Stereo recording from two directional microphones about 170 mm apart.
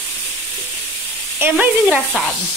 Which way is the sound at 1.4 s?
10° right (ahead or behind).